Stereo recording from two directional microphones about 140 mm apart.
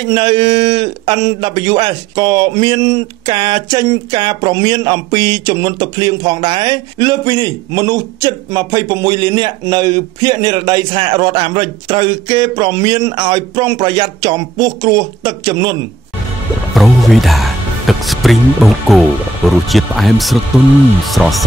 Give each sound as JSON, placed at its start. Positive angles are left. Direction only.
{"t": 0.1, "sound": "speech", "side_deg": -35}
{"t": 16.7, "sound": "speech", "side_deg": 0}